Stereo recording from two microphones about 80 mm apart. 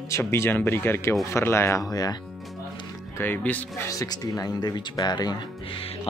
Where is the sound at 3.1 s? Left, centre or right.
Left.